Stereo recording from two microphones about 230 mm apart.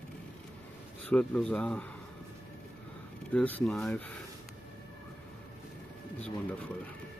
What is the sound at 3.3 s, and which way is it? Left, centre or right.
Speech, centre.